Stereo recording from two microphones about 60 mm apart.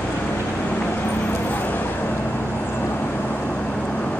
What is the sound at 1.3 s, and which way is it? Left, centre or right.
Vehicle, left.